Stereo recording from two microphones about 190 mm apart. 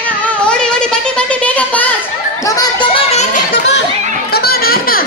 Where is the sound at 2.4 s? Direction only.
20° left (ahead or behind); by 3.4 s 35° left (ahead or behind).